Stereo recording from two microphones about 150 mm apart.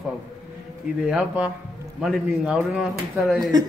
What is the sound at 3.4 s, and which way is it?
Speech, 25° right (ahead or behind).